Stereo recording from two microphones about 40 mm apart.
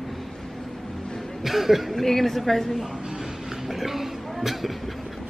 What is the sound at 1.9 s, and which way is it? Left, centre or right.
Speech, centre.